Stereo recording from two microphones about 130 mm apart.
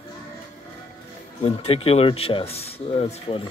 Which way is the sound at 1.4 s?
50° left (ahead or behind).